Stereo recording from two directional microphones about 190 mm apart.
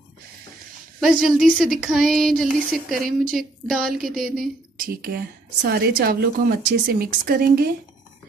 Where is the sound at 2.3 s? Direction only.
Centre (ahead or behind).